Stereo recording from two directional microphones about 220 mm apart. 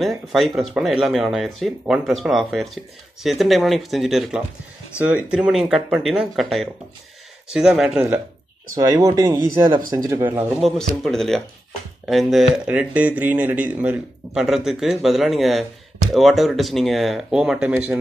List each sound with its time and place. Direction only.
0.0 s speech: centre (ahead or behind)
8.7 s speech: 15° right (ahead or behind)